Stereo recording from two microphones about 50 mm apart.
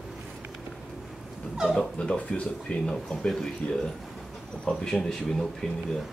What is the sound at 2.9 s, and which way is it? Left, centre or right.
Speech, centre.